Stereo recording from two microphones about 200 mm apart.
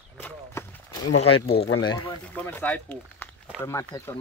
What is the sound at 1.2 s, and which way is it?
Speech, 30° left (ahead or behind).